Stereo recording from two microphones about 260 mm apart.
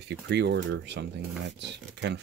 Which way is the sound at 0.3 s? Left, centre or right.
Right.